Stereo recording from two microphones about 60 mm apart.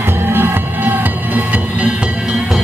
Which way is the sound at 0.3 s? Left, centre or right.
Right.